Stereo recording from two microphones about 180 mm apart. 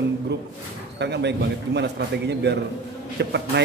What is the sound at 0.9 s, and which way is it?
A man's voice, 70° right (ahead or behind).